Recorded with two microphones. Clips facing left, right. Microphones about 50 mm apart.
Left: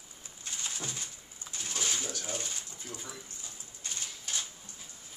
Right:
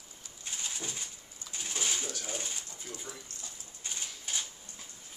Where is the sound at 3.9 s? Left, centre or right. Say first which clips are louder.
Even; centre.